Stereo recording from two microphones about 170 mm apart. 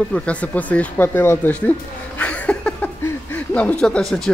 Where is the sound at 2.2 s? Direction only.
10° left (ahead or behind).